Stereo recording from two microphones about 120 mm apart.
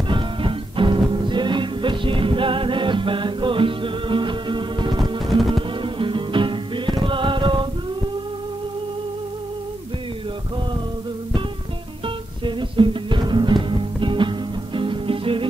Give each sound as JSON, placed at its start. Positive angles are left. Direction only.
{"t": 0.1, "sound": "music", "side_deg": -45}
{"t": 5.2, "sound": "music", "side_deg": 0}
{"t": 5.5, "sound": "music", "side_deg": -45}
{"t": 12.4, "sound": "music", "side_deg": -40}